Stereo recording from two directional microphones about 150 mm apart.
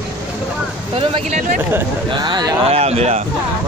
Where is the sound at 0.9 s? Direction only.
40° right (ahead or behind).